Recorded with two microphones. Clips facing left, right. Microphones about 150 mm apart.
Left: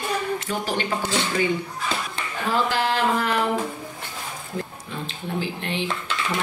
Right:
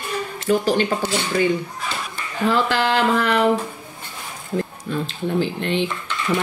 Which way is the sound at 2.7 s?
75° right (ahead or behind).